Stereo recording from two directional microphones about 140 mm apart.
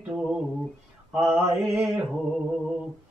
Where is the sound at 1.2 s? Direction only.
20° right (ahead or behind).